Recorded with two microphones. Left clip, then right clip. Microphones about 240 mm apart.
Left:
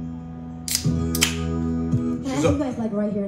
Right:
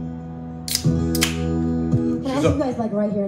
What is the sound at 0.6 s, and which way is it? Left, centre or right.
Music, centre.